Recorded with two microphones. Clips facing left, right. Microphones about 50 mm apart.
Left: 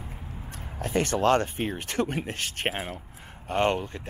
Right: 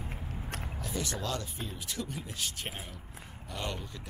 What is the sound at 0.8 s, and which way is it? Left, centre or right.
Speech, left.